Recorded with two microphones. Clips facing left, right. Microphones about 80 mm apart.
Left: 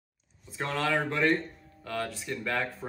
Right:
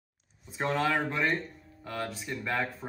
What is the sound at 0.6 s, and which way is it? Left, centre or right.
Speech, centre.